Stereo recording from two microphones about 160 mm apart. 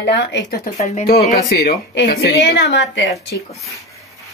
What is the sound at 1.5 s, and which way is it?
Speech, 85° left.